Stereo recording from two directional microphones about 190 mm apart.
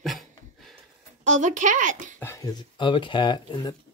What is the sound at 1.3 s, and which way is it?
Speech, 40° right (ahead or behind).